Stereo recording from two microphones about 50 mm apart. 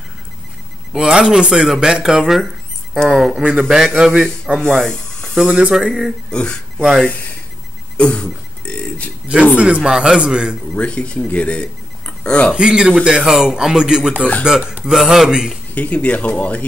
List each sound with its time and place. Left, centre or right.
0.9 s speech: centre
4.6 s speech: centre
5.5 s speech: centre
6.3 s speech: centre
6.8 s speech: centre
8.0 s burping: left
9.6 s speech: right
10.7 s speech: left
12.5 s speech: centre
14.6 s speech: right
15.0 s speech: centre
15.7 s speech: left